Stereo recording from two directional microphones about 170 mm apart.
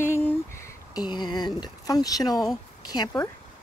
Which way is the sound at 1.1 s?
25° left (ahead or behind).